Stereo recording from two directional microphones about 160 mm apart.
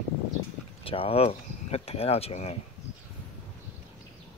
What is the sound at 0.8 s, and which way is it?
Speech, 35° left (ahead or behind).